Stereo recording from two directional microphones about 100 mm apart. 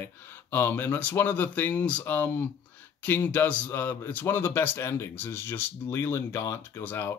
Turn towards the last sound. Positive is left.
turn(degrees=20)  # may be behind; listen again after turning